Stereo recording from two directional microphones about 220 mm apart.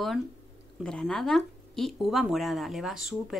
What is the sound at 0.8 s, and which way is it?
Speech, 5° left (ahead or behind).